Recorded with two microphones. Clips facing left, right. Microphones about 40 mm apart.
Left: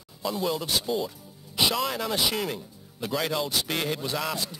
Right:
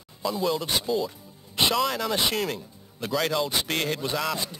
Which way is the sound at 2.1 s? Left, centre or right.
Centre.